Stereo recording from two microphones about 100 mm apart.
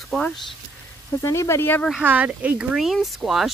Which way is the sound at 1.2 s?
30° left (ahead or behind).